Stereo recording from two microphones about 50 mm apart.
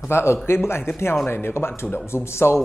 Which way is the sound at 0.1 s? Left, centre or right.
Left.